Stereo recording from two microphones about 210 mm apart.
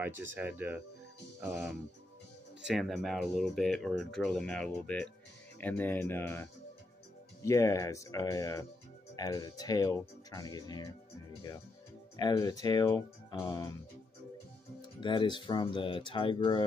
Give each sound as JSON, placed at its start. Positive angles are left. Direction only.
{"t": 0.0, "sound": "speech", "side_deg": -10}
{"t": 12.2, "sound": "speech", "side_deg": 20}
{"t": 15.0, "sound": "speech", "side_deg": 25}